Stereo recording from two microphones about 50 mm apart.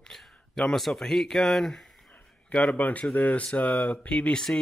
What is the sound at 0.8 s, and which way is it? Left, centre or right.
A man's voice, centre.